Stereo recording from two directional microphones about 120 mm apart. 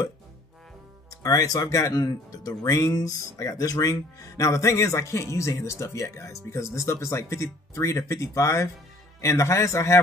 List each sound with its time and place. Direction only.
1.1 s speech: 30° left (ahead or behind)